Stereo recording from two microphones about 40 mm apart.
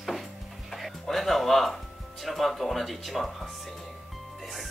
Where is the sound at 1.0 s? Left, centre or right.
Centre.